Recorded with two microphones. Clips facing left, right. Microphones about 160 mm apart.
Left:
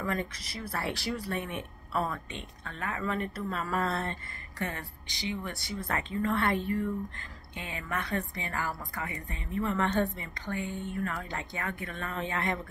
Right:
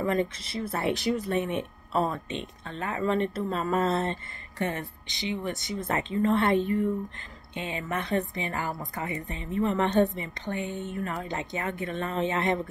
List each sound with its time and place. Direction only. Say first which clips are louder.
0.0 s speech: right 7 dB; 20° right (ahead or behind)